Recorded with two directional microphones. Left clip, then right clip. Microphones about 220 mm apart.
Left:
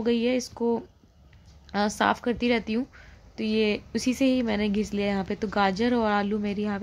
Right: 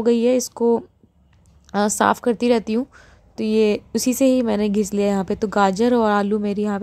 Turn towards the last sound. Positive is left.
turn(degrees=-35)  # may be behind; listen again after turning